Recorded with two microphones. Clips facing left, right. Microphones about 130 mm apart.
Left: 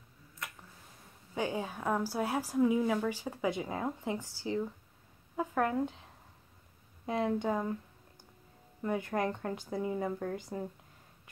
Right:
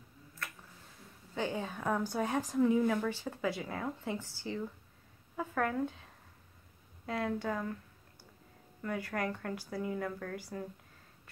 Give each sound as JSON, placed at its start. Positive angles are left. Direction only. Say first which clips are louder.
{"t": 1.3, "sound": "a woman's voice", "louder": "left 1 dB", "side_deg": 10}
{"t": 7.1, "sound": "a woman's voice", "louder": "left 4 dB", "side_deg": 20}
{"t": 8.8, "sound": "a woman's voice", "louder": "left 4 dB", "side_deg": 20}